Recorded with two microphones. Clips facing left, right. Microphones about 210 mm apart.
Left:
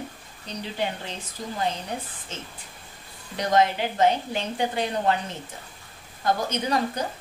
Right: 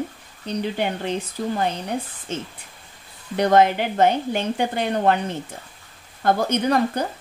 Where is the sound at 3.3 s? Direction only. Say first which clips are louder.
Right 5 dB; 60° right (ahead or behind).